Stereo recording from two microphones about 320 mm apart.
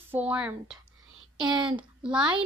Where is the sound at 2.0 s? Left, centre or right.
Centre.